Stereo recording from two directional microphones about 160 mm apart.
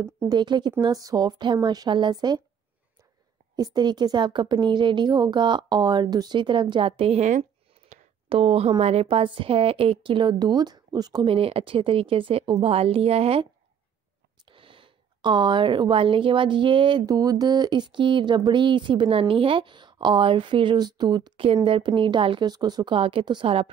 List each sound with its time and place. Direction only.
0.0 s speech: 15° right (ahead or behind)
0.4 s speech: 30° right (ahead or behind)
3.5 s speech: 25° right (ahead or behind); by 7.4 s 50° right (ahead or behind)
7.9 s a woman's voice: 35° right (ahead or behind)